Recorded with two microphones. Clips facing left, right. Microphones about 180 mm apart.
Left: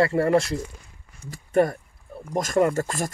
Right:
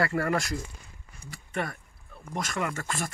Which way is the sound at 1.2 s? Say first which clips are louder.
Left 13 dB; 40° left (ahead or behind).